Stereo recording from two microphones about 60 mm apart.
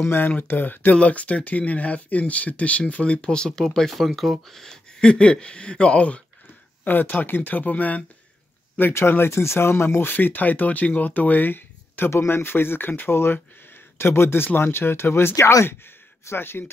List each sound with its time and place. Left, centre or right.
0.0 s speech: left; by 3.6 s centre
3.6 s speech: centre
6.8 s speech: left
8.9 s speech: left